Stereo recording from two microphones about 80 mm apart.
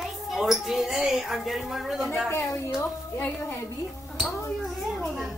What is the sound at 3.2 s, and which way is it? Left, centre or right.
Speech, left.